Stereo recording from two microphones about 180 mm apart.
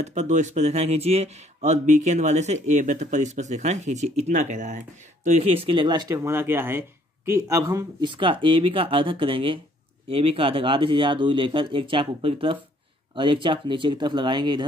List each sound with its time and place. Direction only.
0.0 s speech: 40° right (ahead or behind)